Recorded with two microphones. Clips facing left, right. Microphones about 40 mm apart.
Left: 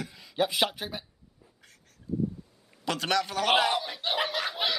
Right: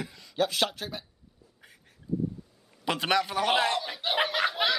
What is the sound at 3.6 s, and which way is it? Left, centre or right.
Speech, centre.